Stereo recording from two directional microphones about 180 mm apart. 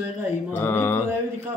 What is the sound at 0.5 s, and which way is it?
Mantra, 10° left (ahead or behind).